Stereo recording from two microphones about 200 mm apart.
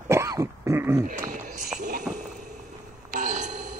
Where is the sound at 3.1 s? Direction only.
40° right (ahead or behind).